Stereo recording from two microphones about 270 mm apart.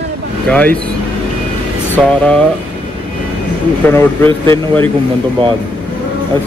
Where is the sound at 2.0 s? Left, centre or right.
Centre.